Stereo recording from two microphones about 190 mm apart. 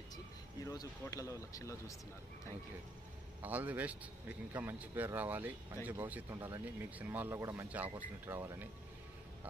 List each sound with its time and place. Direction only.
0.7 s speech: 20° left (ahead or behind)
3.4 s speech: 10° right (ahead or behind)